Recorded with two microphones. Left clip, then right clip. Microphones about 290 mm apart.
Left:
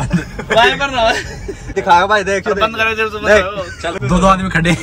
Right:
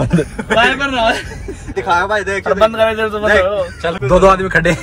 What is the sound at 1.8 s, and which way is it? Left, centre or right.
Speech, left.